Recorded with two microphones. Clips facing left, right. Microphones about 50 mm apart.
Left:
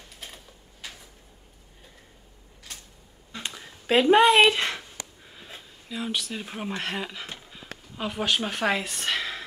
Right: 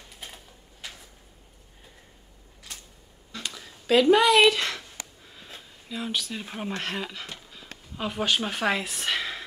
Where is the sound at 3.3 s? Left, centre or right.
Left.